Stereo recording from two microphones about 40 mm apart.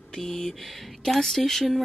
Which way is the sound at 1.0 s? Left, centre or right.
Centre.